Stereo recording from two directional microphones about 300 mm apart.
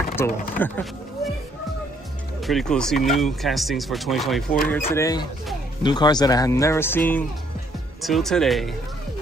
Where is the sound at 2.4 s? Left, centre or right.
Centre.